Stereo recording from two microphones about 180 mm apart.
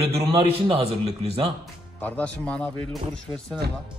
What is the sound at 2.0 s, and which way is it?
Speech, 10° left (ahead or behind).